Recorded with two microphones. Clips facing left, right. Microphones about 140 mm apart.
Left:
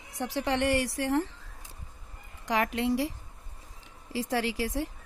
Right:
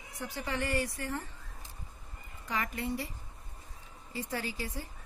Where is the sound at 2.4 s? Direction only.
80° left.